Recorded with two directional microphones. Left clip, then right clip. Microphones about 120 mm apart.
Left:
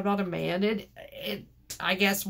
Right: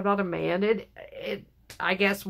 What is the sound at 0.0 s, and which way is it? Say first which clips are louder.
Speech: right 3 dB; 30° right (ahead or behind).